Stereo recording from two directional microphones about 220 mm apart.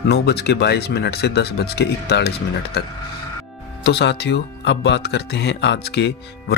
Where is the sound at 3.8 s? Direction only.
50° left (ahead or behind).